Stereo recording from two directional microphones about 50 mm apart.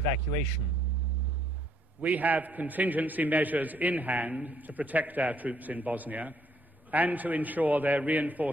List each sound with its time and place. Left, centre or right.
2.0 s a man's voice: right